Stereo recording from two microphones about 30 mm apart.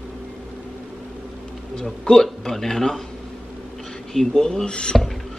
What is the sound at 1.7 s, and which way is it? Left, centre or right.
A man's voice, left.